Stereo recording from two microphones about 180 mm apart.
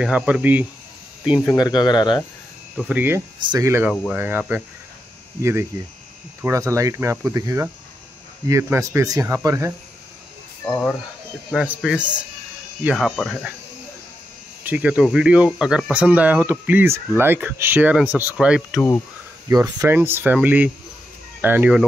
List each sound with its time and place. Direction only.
0.0 s speech: 5° right (ahead or behind)
1.5 s speech: 25° left (ahead or behind)
2.8 s speech: 10° right (ahead or behind)
3.3 s speech: 20° right (ahead or behind)
10.7 s speech: 5° left (ahead or behind)
11.5 s speech: 5° right (ahead or behind)
14.6 s speech: 10° right (ahead or behind)
19.5 s speech: 15° right (ahead or behind)